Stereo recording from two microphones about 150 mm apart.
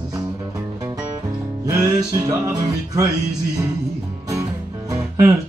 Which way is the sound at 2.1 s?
25° right (ahead or behind).